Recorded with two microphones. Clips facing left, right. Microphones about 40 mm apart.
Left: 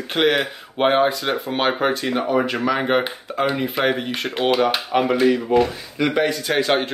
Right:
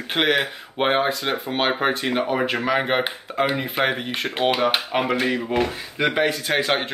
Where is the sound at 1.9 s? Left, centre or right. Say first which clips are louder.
Left 2 dB; right; by 4.3 s centre.